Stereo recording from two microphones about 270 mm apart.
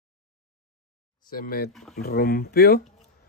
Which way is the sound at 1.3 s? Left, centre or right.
Left.